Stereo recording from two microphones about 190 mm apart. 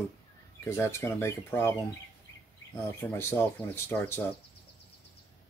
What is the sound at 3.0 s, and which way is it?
Speech, 15° left (ahead or behind).